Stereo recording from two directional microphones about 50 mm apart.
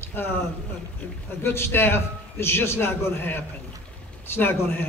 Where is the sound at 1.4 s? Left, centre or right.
Left.